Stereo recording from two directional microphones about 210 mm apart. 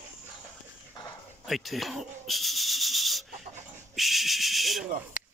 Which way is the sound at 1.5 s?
Centre (ahead or behind).